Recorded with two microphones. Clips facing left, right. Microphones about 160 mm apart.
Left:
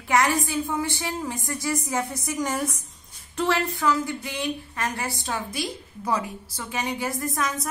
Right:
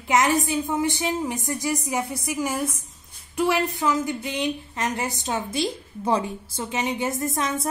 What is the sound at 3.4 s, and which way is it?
A woman's voice, 15° right (ahead or behind).